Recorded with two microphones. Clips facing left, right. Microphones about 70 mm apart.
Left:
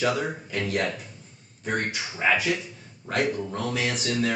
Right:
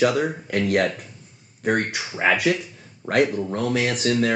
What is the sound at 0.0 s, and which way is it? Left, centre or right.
Speech, right.